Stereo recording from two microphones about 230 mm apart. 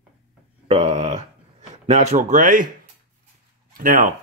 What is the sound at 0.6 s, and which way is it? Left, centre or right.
Speech, right.